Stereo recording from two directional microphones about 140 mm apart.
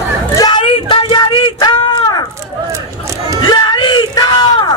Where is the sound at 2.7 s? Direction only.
20° right (ahead or behind).